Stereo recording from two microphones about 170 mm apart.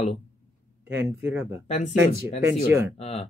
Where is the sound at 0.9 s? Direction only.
10° right (ahead or behind).